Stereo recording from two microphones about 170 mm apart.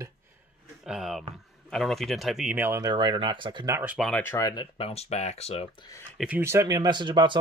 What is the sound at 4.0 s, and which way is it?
Speech, 5° left (ahead or behind).